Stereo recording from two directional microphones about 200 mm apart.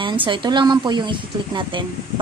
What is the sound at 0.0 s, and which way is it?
A woman's voice, 25° right (ahead or behind).